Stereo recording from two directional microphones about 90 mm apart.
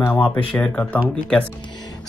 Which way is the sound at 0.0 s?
25° left (ahead or behind).